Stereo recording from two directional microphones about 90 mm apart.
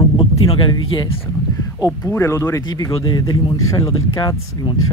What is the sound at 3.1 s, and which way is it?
Speech, 50° left (ahead or behind).